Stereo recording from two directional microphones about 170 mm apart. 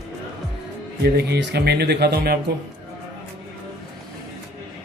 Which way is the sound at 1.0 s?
75° right (ahead or behind).